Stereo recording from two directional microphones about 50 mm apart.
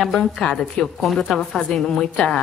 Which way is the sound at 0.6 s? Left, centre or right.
Centre.